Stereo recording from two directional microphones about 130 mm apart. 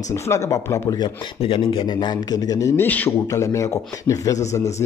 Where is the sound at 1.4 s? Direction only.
45° left (ahead or behind).